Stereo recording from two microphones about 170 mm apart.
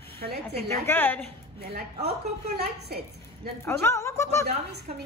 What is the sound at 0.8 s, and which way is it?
Speech, 10° left (ahead or behind).